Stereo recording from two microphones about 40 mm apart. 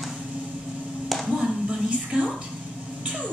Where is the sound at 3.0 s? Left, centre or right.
Right.